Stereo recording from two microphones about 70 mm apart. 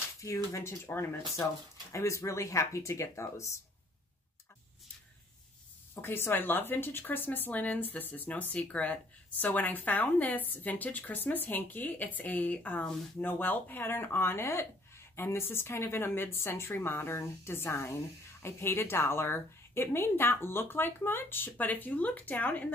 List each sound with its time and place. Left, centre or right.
0.2 s speech: left
0.8 s speech: left
5.9 s a woman's voice: left